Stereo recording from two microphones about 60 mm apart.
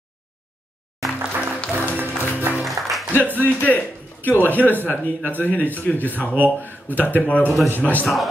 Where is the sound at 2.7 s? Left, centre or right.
Centre.